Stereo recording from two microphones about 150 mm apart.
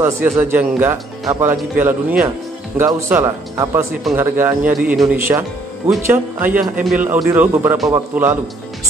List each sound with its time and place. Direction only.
0.0 s speech: 15° right (ahead or behind)
4.7 s a man's voice: centre (ahead or behind)
5.0 s speech: 20° right (ahead or behind)